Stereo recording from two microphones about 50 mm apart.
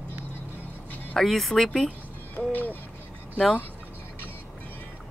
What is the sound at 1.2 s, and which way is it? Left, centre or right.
Speech, centre.